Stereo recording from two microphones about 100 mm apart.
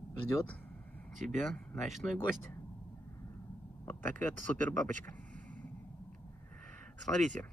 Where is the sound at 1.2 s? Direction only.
Centre (ahead or behind).